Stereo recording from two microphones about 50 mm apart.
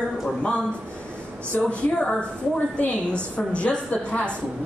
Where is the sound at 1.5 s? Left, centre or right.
Left.